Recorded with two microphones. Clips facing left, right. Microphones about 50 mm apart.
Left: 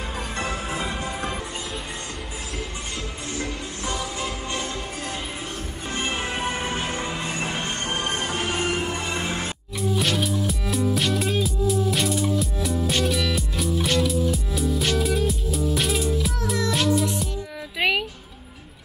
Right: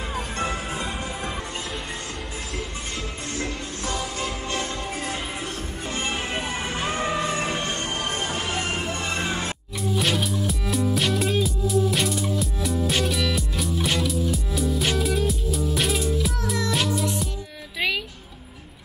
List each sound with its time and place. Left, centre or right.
0.7 s music: centre
3.9 s music: centre
5.9 s music: left
6.5 s music: centre
6.9 s music: centre
7.5 s music: centre
8.6 s music: centre